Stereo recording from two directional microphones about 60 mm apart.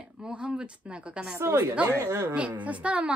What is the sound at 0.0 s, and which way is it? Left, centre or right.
A woman's voice, centre.